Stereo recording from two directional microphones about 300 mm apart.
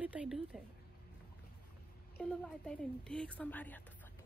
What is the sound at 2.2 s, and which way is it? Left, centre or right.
A woman's voice, centre.